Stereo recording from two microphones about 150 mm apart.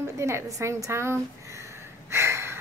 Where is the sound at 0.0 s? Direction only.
20° right (ahead or behind).